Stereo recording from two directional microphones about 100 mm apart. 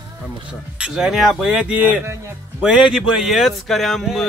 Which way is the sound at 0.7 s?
10° right (ahead or behind).